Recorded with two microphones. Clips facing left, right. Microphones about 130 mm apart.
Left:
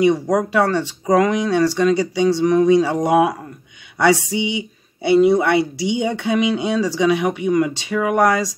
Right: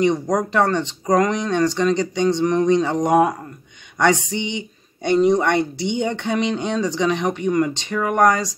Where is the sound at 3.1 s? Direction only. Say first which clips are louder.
Even; 40° right (ahead or behind).